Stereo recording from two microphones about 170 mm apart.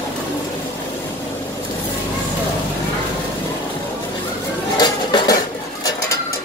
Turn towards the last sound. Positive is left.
turn(degrees=25)  # may be behind; listen again after turning